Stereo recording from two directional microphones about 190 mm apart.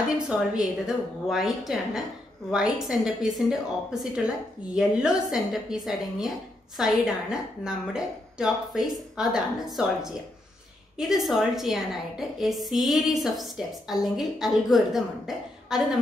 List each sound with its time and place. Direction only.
0.0 s a woman's voice: 5° right (ahead or behind)